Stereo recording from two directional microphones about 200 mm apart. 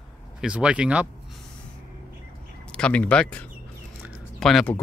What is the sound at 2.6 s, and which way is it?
Speech, 5° left (ahead or behind).